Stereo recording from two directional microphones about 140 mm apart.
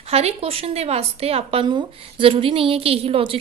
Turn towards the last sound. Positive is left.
turn(degrees=-40)  # may be behind; listen again after turning